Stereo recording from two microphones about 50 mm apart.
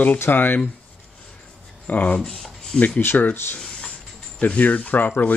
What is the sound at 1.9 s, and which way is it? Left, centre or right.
Speech, left.